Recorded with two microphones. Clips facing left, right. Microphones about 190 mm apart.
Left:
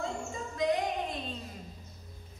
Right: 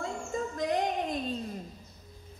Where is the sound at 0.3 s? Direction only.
45° right (ahead or behind).